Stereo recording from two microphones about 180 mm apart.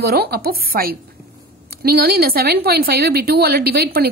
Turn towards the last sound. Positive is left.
turn(degrees=-55)  # may be behind; listen again after turning